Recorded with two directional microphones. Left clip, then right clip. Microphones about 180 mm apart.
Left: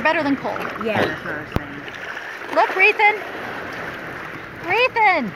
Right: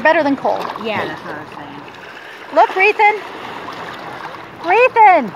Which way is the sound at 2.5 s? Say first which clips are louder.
Right 4 dB; 35° left (ahead or behind).